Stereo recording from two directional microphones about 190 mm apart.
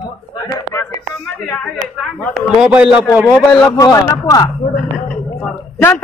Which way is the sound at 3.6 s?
20° left (ahead or behind).